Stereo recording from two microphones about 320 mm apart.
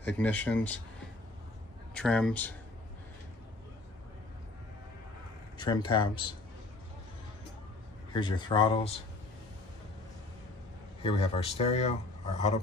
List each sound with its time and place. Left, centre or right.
0.2 s speech: centre
2.0 s speech: centre
5.6 s speech: centre
8.1 s speech: centre
11.0 s speech: centre